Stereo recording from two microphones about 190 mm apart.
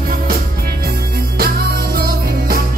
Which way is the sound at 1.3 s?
50° right (ahead or behind).